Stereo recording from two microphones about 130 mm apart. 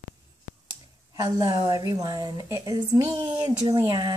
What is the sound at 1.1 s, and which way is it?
A woman's voice, 25° right (ahead or behind).